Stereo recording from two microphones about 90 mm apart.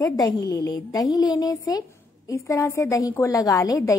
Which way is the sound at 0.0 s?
40° left (ahead or behind).